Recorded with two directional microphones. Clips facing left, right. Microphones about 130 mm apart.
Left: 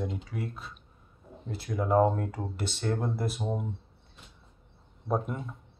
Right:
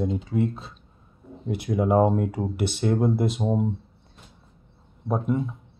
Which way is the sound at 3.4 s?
25° right (ahead or behind).